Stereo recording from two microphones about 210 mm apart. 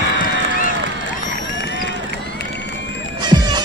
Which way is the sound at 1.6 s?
55° left (ahead or behind).